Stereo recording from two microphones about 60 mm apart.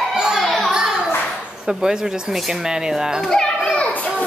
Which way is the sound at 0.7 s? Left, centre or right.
Centre.